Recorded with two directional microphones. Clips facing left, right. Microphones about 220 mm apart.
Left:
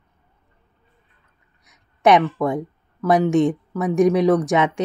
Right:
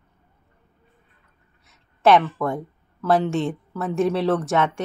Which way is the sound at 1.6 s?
15° left (ahead or behind).